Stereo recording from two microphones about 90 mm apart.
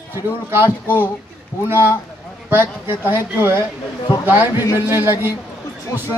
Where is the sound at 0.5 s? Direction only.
25° right (ahead or behind).